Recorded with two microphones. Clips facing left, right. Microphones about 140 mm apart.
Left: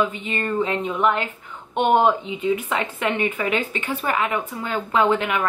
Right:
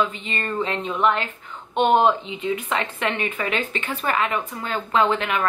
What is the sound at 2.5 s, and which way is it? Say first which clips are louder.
Speech: even; 10° left (ahead or behind).